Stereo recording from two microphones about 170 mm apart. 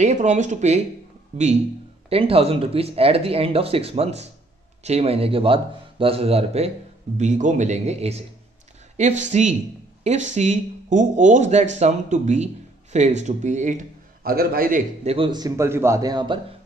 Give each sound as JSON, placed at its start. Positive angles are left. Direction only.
{"t": 0.0, "sound": "speech", "side_deg": -40}
{"t": 14.2, "sound": "a man's voice", "side_deg": -60}
{"t": 15.0, "sound": "a man's voice", "side_deg": -30}